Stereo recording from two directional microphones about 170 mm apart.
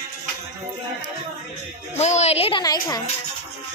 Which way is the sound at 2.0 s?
40° left (ahead or behind).